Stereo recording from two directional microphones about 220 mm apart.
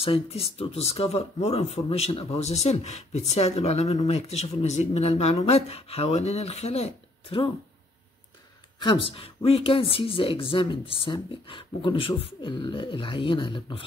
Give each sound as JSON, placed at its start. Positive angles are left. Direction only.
{"t": 0.0, "sound": "speech", "side_deg": 25}
{"t": 8.7, "sound": "speech", "side_deg": 20}